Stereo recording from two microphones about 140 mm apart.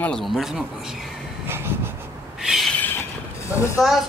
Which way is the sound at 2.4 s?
5° right (ahead or behind).